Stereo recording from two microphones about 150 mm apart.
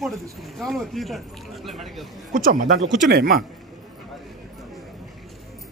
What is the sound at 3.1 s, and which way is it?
Speech, 90° right.